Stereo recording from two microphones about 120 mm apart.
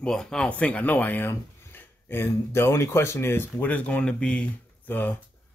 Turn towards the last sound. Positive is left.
turn(degrees=15)  # may be behind; listen again after turning